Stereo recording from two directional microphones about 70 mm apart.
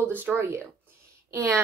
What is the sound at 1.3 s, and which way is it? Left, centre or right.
Speech, right.